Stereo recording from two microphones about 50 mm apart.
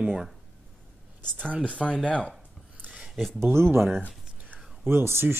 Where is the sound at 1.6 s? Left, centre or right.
Left.